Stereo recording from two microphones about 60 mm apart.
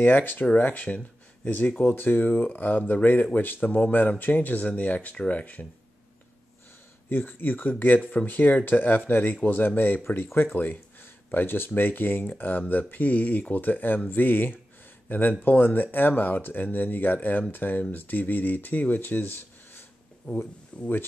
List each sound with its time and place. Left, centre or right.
0.0 s speech: left
7.1 s speech: left
20.3 s speech: left